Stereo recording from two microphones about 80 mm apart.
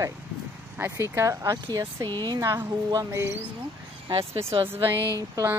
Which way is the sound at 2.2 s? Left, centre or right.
Right.